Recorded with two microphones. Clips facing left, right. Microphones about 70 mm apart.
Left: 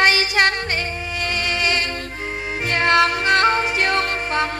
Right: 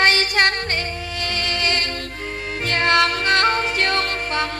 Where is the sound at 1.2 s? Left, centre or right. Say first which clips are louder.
Left 2 dB; left.